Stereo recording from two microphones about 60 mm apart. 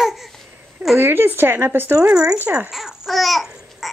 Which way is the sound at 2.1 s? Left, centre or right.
Centre.